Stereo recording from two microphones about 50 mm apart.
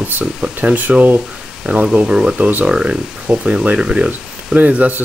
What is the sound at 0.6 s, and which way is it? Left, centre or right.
Speech, right.